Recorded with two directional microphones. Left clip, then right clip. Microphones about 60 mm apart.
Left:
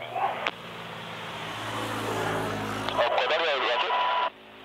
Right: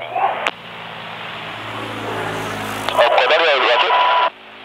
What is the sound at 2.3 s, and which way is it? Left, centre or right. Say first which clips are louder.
Vehicle: right 6 dB; right.